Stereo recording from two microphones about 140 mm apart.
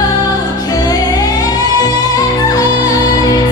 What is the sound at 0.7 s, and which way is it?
Music, 25° left (ahead or behind).